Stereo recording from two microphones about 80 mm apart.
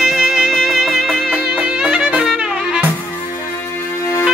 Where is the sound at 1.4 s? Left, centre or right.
Centre.